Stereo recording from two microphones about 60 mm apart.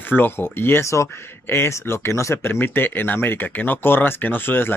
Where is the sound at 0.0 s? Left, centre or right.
Left.